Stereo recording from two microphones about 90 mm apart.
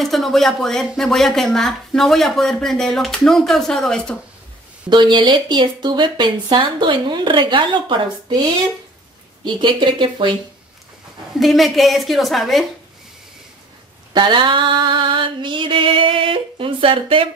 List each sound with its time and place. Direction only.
0.0 s speech: centre (ahead or behind)
4.8 s speech: 60° right (ahead or behind)
11.3 s speech: centre (ahead or behind)
14.1 s a sound: 60° right (ahead or behind); by 17.3 s 80° right